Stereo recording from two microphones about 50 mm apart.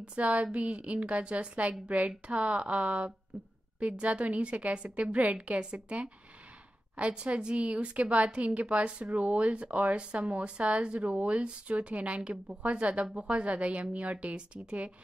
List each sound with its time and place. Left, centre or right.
0.1 s a woman's voice: right